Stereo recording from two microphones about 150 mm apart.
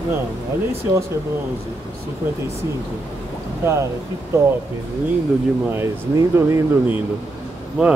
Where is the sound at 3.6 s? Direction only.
20° right (ahead or behind).